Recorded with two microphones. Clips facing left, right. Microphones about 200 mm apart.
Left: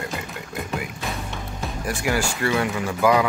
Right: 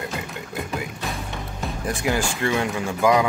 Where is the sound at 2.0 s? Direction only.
20° right (ahead or behind).